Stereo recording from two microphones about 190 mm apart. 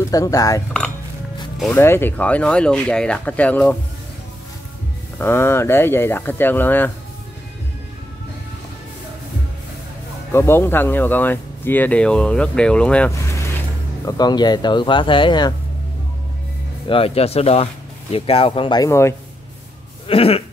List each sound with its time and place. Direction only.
0.1 s speech: 20° left (ahead or behind)
1.6 s speech: 10° left (ahead or behind)
5.2 s speech: 15° left (ahead or behind)
10.3 s speech: 15° left (ahead or behind)
16.9 s speech: 30° left (ahead or behind); by 19.1 s 15° left (ahead or behind)
20.1 s speech: 30° left (ahead or behind)